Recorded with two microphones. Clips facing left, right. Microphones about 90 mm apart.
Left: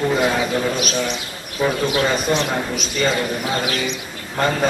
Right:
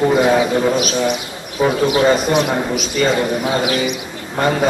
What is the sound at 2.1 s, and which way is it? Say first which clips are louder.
A man's voice: right 4 dB; 5° right (ahead or behind).